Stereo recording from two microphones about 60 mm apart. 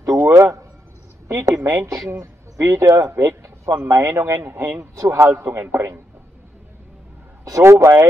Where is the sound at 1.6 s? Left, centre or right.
Right.